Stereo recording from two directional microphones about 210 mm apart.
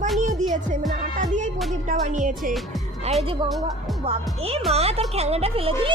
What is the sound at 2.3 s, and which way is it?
Speech, centre (ahead or behind).